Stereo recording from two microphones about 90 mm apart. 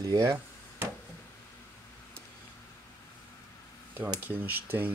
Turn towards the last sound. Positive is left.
turn(degrees=-20)  # may be behind; listen again after turning